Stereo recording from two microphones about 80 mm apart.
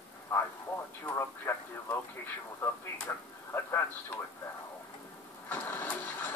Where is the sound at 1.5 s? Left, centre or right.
Left.